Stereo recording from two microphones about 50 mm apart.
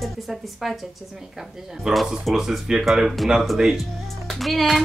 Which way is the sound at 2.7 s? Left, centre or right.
Centre.